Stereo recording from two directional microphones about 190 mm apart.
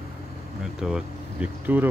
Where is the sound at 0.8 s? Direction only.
5° right (ahead or behind).